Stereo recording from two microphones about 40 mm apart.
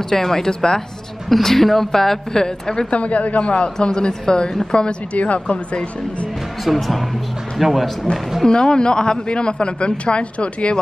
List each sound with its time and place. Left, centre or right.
0.1 s a woman's voice: centre
2.9 s a woman's voice: left
6.6 s speech: centre
8.5 s a man's voice: left